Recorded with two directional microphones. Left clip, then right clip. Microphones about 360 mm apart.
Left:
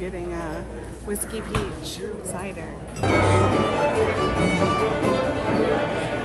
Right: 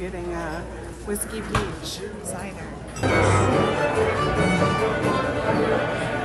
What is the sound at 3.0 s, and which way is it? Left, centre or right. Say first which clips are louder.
Music: even; centre.